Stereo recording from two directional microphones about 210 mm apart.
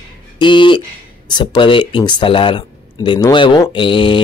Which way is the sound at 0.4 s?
20° left (ahead or behind).